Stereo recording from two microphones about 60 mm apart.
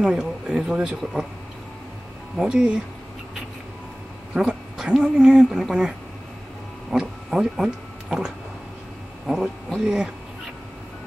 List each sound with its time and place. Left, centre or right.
0.0 s speech: centre
2.4 s speech: centre
4.3 s speech: centre